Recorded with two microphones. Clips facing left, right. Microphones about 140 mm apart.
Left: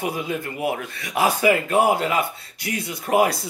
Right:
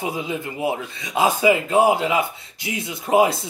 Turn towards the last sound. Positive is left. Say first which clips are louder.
# right 2 dB
turn(degrees=-20)  # may be behind; listen again after turning